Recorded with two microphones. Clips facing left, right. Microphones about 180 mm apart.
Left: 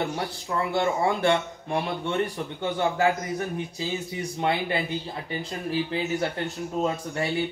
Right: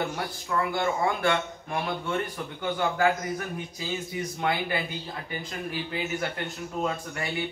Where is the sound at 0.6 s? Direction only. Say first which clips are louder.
Left 2 dB; 30° left (ahead or behind).